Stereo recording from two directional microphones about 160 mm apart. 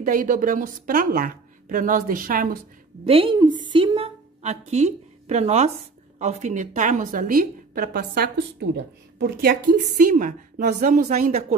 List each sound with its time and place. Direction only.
0.0 s a woman's voice: 55° right (ahead or behind)
3.1 s a woman's voice: 35° right (ahead or behind); by 9.8 s 75° right (ahead or behind)
10.1 s a woman's voice: 50° right (ahead or behind)